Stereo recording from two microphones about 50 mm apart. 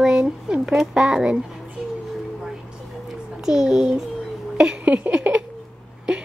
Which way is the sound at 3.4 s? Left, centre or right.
Centre.